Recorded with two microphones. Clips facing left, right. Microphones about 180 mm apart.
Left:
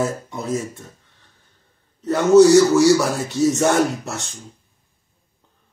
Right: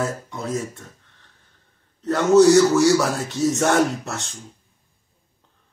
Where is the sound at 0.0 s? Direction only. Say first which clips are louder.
Left 3 dB; 5° left (ahead or behind).